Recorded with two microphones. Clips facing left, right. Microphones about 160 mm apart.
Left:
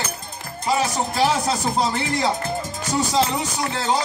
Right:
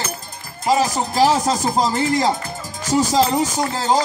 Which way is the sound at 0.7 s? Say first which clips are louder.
Right 4 dB; 40° right (ahead or behind).